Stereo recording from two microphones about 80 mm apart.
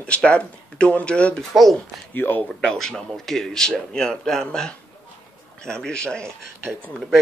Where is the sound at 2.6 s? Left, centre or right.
Centre.